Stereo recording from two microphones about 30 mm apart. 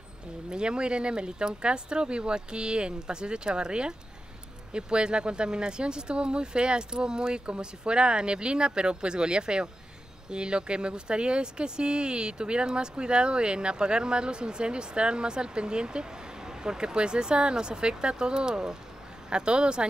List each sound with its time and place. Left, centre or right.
0.5 s speech: right